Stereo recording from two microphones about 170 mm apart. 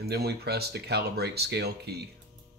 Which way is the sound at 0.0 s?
70° right (ahead or behind).